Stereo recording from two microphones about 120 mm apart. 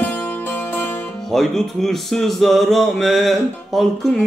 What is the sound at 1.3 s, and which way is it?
Speech, centre (ahead or behind).